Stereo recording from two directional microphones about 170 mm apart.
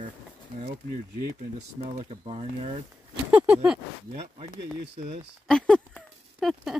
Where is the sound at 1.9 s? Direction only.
35° right (ahead or behind).